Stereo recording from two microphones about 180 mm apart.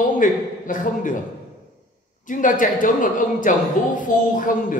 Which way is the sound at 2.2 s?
45° left (ahead or behind).